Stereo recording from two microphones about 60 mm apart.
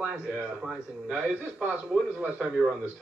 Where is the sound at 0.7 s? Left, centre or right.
Centre.